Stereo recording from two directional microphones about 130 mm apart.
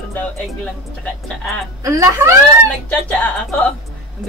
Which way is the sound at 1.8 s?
25° right (ahead or behind).